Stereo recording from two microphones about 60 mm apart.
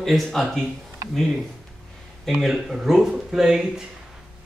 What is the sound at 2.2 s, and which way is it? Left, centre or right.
Speech, centre.